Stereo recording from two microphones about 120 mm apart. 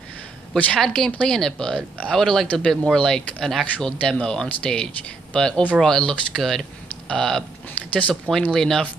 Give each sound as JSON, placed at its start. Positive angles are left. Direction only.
{"t": 0.5, "sound": "speech", "side_deg": 5}